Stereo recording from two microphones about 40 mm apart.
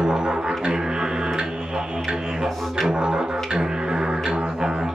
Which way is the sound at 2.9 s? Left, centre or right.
Centre.